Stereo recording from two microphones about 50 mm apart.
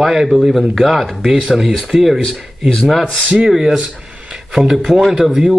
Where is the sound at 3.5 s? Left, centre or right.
Centre.